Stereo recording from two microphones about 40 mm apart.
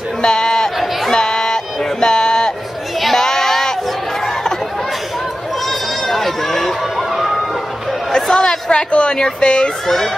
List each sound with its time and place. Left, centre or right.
0.2 s sheep: centre
1.1 s a sound: centre
3.2 s child singing: centre
4.2 s chatter: centre
5.7 s run: centre
8.1 s a sound: centre
9.8 s speech: centre